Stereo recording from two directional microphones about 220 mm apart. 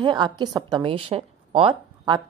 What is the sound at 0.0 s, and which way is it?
A woman's voice, 20° right (ahead or behind).